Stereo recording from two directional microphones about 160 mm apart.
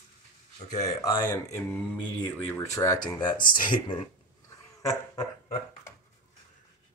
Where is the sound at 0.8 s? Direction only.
20° left (ahead or behind).